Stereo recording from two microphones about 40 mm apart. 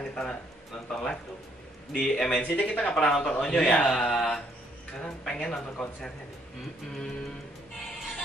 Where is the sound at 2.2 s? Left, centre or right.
Left.